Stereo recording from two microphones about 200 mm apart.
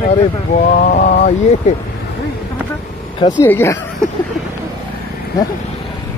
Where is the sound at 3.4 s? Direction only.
10° left (ahead or behind).